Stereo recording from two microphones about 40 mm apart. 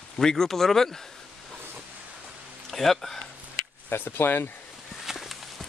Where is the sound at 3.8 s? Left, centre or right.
Left.